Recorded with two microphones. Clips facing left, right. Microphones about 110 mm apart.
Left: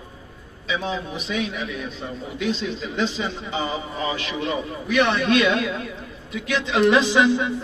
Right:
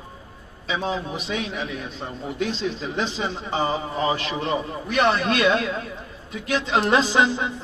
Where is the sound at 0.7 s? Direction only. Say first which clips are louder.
Right 1 dB; 35° right (ahead or behind).